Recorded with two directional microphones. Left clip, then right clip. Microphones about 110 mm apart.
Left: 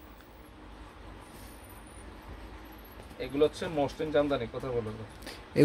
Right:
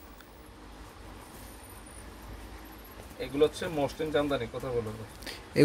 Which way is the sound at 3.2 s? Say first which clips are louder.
Right 1 dB; 10° left (ahead or behind).